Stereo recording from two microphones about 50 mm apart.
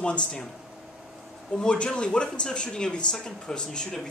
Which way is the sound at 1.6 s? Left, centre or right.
Centre.